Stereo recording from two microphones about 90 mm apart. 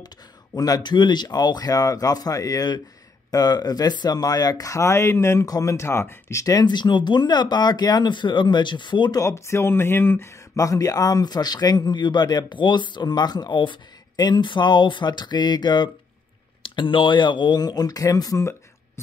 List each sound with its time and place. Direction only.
0.6 s speech: 45° left (ahead or behind)
6.6 s speech: 55° left (ahead or behind)
9.1 s speech: 35° left (ahead or behind)
10.5 s speech: 40° left (ahead or behind); by 15.9 s 55° left (ahead or behind)
16.6 s speech: 70° left (ahead or behind); by 18.4 s 40° left (ahead or behind)